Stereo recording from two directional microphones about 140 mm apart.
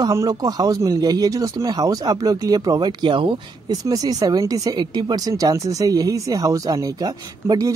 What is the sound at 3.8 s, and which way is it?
A woman's voice, 25° right (ahead or behind).